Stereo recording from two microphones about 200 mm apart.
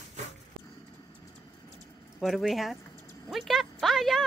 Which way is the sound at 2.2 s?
Centre (ahead or behind).